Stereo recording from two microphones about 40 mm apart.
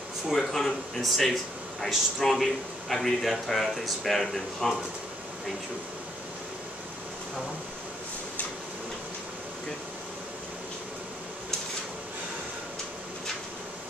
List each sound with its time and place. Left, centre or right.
0.3 s speech: centre